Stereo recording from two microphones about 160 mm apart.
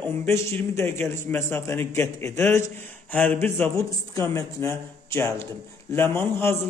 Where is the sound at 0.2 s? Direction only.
15° left (ahead or behind).